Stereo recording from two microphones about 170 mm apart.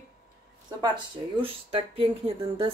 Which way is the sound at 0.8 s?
30° right (ahead or behind).